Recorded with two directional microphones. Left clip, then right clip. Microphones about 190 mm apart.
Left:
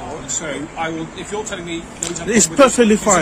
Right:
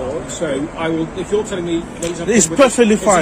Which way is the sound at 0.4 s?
30° left (ahead or behind).